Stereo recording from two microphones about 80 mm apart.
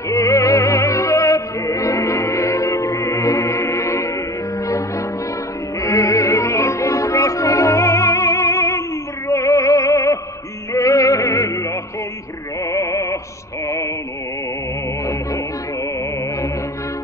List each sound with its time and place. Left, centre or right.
0.1 s music: left